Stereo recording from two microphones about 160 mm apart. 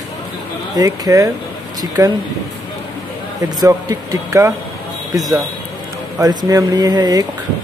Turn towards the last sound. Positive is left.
turn(degrees=-25)  # may be behind; listen again after turning